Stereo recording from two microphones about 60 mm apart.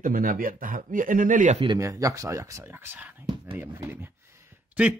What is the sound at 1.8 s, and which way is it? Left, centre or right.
Speech, right.